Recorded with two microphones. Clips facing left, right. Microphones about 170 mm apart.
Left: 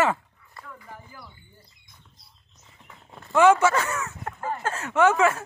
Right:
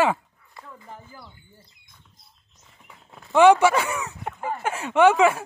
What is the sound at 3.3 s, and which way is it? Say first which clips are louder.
A man's voice: right 3 dB; 15° right (ahead or behind).